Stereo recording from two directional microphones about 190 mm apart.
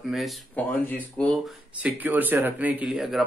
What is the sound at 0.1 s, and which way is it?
Speech, centre (ahead or behind).